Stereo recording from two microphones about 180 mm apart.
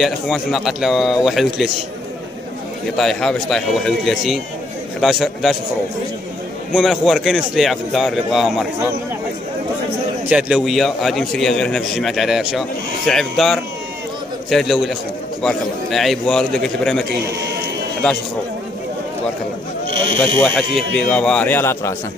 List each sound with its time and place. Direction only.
0.0 s a man's voice: centre (ahead or behind)
3.0 s a man's voice: 5° left (ahead or behind)
6.7 s a man's voice: centre (ahead or behind)
10.2 s a man's voice: 5° right (ahead or behind)
19.9 s sheep: 90° right
20.3 s a man's voice: 5° left (ahead or behind)